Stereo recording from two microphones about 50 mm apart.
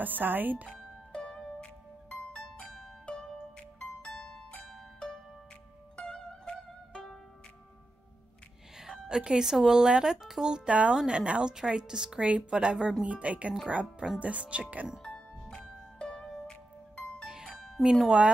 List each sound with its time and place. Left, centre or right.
0.0 s speech: right
0.7 s music: centre
2.6 s pizzicato: left
4.1 s pizzicato: centre
5.9 s music: centre
8.7 s speech: centre; by 14.9 s right
15.0 s music: centre
18.0 s speech: centre